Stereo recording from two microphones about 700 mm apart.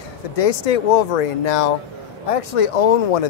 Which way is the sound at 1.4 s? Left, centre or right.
Left.